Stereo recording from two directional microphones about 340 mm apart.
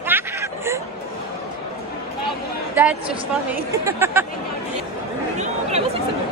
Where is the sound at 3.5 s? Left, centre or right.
Centre.